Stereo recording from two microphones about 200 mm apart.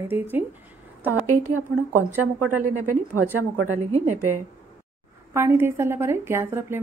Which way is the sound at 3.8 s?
35° right (ahead or behind).